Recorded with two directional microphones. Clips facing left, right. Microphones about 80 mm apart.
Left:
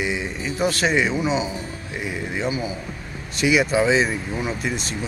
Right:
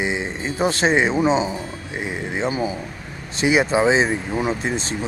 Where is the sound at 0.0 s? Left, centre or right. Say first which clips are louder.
Right 2 dB; right.